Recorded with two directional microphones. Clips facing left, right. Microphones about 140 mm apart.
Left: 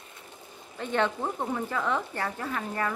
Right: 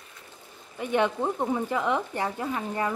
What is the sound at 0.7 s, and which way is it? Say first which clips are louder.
Speech: right 3 dB; 15° right (ahead or behind).